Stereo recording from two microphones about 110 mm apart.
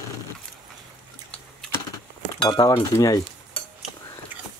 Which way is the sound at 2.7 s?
30° left (ahead or behind).